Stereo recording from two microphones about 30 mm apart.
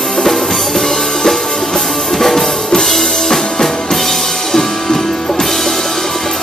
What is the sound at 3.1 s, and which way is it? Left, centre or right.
Drum kit, centre.